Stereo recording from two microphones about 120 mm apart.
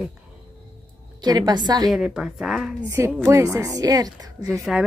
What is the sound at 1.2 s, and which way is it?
Speech, 35° right (ahead or behind).